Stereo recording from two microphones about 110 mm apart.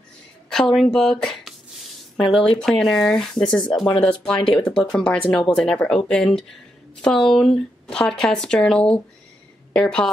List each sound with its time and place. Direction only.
0.7 s a woman's voice: 5° left (ahead or behind)
4.4 s speech: 50° left (ahead or behind)
4.6 s a woman's voice: 5° left (ahead or behind)